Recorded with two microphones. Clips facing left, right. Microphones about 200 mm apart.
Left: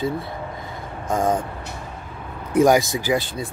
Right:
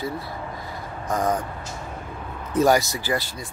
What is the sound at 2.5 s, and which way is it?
Speech, 20° left (ahead or behind).